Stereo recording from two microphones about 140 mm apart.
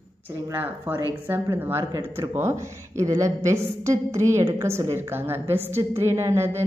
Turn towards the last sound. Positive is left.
turn(degrees=-20)  # may be behind; listen again after turning